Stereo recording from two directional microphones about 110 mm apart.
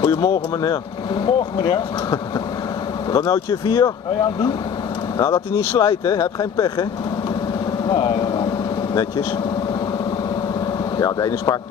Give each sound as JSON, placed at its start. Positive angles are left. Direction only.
{"t": 0.0, "sound": "speech", "side_deg": 40}
{"t": 5.2, "sound": "speech", "side_deg": 35}
{"t": 7.9, "sound": "vehicle", "side_deg": 45}
{"t": 11.0, "sound": "speech", "side_deg": 35}